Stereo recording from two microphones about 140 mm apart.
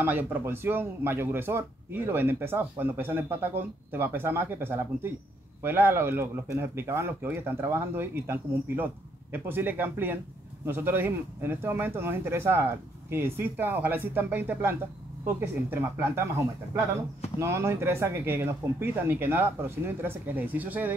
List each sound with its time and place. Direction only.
0.0 s speech: 15° right (ahead or behind)